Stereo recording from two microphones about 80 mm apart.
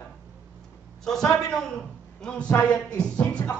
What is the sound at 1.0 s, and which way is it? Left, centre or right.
A man's voice, centre.